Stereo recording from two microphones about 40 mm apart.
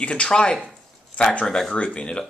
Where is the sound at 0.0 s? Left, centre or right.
Left.